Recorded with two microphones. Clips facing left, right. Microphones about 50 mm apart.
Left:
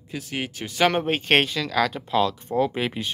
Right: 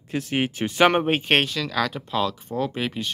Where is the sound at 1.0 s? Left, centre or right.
Centre.